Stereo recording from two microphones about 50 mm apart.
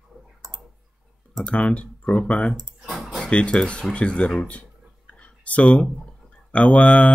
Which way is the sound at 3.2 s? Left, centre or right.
Left.